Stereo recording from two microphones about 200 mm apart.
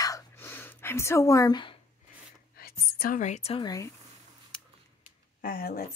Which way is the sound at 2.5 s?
50° left (ahead or behind).